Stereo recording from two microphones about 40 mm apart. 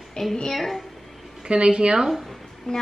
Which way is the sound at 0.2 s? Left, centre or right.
Centre.